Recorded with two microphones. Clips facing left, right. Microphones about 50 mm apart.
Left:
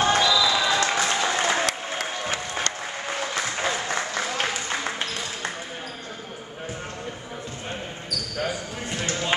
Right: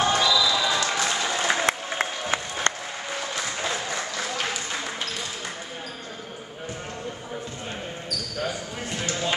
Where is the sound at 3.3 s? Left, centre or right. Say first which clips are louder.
Left 3 dB; left.